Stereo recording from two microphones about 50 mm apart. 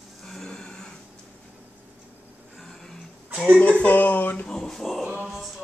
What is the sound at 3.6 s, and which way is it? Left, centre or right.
Speech, left.